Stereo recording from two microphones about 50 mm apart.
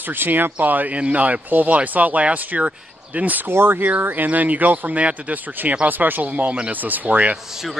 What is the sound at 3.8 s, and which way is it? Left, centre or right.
Speech, right.